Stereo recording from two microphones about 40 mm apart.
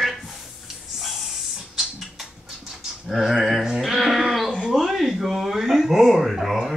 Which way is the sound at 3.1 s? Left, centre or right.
Centre.